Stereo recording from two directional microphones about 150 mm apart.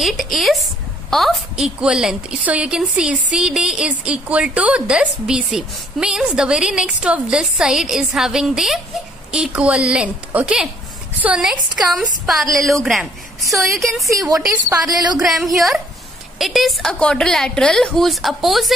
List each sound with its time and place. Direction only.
0.0 s a woman's voice: centre (ahead or behind)
14.9 s a sound: 25° right (ahead or behind)
15.2 s a woman's voice: centre (ahead or behind)